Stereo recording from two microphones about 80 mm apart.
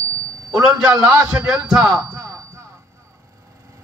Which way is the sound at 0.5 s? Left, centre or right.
Right.